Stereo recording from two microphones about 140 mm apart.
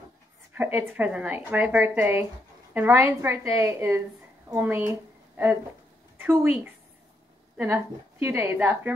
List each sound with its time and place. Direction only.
0.7 s a woman's voice: 10° right (ahead or behind)
6.1 s speech: 15° right (ahead or behind)
7.5 s a woman's voice: 15° right (ahead or behind)